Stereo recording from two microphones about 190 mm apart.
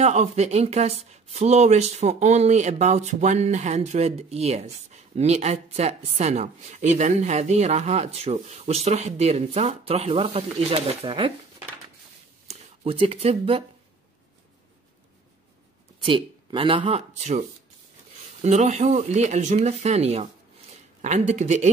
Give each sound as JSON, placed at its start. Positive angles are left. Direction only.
{"t": 0.0, "sound": "speech", "side_deg": -35}
{"t": 12.4, "sound": "speech", "side_deg": -30}
{"t": 16.0, "sound": "speech", "side_deg": -25}